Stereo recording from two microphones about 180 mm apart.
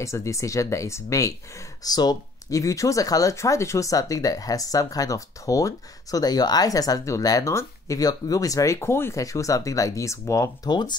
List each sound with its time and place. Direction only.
0.0 s speech: 15° left (ahead or behind)